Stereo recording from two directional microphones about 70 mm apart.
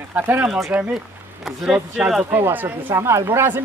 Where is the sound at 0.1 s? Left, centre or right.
Right.